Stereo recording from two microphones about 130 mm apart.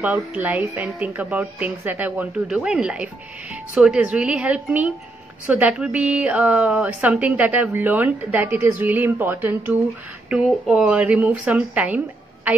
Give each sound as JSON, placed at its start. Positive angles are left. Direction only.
{"t": 0.0, "sound": "speech", "side_deg": -10}